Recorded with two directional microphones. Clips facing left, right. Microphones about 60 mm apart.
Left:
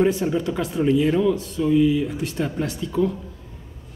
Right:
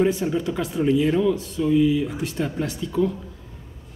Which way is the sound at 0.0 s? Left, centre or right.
Centre.